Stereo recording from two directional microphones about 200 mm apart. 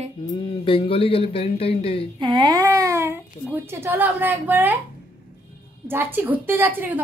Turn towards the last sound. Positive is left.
turn(degrees=-10)  # may be behind; listen again after turning